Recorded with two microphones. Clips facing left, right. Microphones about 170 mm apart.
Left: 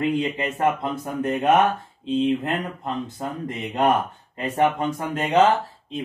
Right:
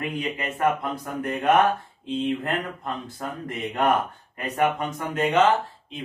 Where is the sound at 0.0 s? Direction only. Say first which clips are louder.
Left 6 dB; 25° left (ahead or behind).